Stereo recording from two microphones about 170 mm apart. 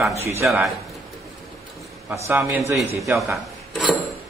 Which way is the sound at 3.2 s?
Centre (ahead or behind).